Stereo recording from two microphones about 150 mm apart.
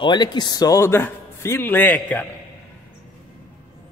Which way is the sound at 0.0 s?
30° left (ahead or behind).